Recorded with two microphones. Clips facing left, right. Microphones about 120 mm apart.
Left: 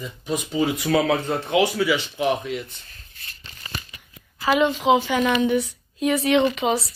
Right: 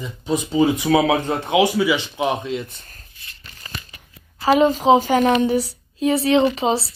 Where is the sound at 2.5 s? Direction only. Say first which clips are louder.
Right 4 dB; 40° right (ahead or behind).